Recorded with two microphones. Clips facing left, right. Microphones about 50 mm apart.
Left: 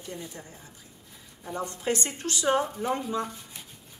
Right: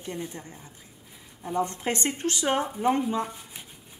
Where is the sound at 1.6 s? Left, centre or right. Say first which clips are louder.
Right 1 dB; right.